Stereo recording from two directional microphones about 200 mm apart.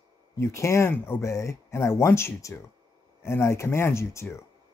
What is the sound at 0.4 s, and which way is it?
Speech, 15° left (ahead or behind).